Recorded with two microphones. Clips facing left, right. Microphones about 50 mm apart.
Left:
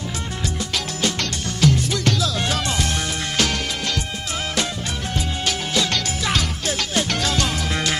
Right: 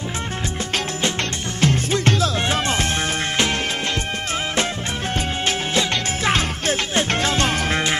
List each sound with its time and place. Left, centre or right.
1.6 s music: right
5.1 s music: right